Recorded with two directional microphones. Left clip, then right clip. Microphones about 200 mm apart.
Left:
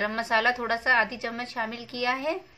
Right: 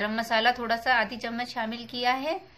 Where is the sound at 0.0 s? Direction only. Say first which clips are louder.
Even; 20° left (ahead or behind).